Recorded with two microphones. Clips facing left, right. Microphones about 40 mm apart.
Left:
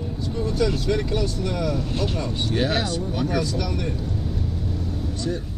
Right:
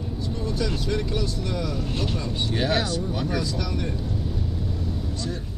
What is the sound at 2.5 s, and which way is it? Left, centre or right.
Speech, centre.